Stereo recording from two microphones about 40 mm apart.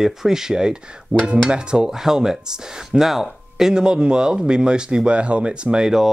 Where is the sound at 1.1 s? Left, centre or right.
Right.